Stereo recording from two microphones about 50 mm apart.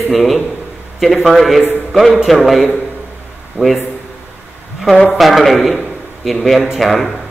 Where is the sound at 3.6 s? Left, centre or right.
Left.